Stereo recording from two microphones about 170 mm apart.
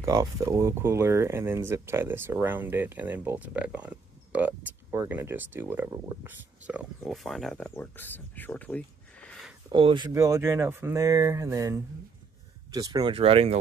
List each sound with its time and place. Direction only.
0.0 s speech: 20° right (ahead or behind); by 9.5 s 5° left (ahead or behind)
9.7 s speech: 30° right (ahead or behind)
10.1 s speech: 15° right (ahead or behind); by 13.6 s 35° right (ahead or behind)